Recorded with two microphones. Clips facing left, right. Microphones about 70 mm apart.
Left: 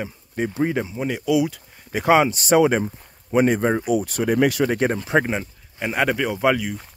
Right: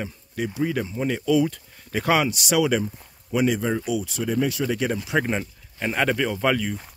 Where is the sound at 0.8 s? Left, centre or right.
Centre.